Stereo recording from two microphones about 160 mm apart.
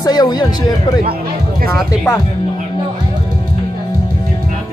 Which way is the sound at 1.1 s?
70° right (ahead or behind).